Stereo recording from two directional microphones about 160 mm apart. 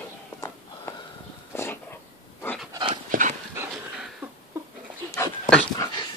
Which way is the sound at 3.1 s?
55° right (ahead or behind).